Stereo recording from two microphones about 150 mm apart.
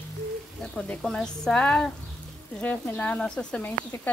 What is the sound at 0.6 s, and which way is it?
A woman's voice, centre (ahead or behind).